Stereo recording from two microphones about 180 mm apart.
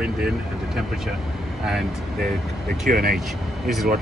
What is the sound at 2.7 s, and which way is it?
Speech, 55° right (ahead or behind).